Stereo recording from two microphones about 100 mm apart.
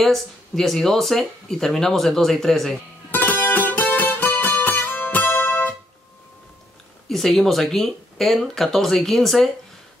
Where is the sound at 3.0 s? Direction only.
20° left (ahead or behind).